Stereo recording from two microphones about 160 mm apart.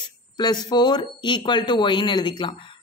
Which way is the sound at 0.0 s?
25° left (ahead or behind).